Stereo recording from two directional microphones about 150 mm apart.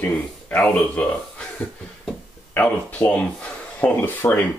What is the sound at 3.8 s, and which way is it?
Speech, 10° left (ahead or behind).